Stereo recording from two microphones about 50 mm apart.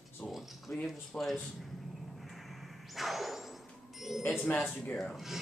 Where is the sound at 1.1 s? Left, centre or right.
Left.